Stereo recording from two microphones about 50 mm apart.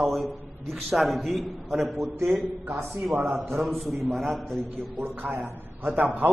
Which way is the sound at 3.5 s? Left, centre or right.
Centre.